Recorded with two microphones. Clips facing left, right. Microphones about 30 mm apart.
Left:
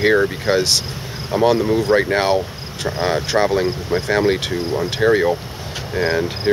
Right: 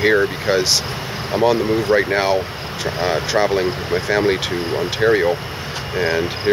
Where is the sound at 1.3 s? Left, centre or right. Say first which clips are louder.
Left 1 dB; right.